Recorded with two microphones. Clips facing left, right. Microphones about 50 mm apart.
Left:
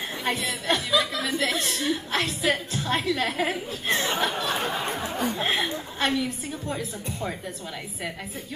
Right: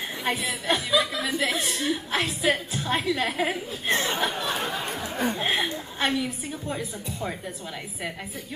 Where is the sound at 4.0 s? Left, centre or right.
Centre.